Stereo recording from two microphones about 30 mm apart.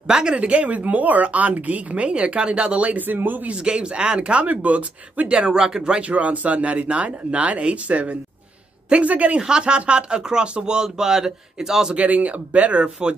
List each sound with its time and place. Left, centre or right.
0.0 s speech: right
0.4 s speech: right
3.0 s speech: right
3.5 s speech: right
4.5 s speech: right
5.5 s speech: right
5.8 s speech: right
6.0 s speech: right
9.4 s speech: right
11.9 s speech: right